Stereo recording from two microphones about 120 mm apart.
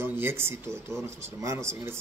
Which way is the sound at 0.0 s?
20° right (ahead or behind).